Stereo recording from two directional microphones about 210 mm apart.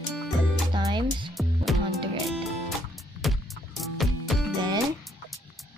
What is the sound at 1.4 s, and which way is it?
Music, centre (ahead or behind).